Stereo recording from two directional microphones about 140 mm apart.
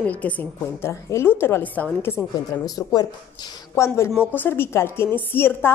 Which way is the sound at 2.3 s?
25° left (ahead or behind).